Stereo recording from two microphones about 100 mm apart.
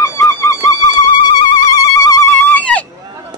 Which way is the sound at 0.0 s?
25° left (ahead or behind).